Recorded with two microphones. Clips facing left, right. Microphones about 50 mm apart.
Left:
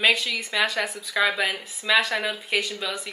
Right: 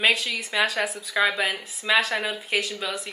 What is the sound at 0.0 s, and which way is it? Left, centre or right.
Speech, centre.